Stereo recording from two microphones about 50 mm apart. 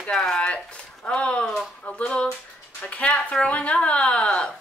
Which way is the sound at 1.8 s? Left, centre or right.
Left.